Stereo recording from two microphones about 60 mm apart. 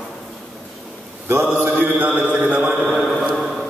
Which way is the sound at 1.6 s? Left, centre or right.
Right.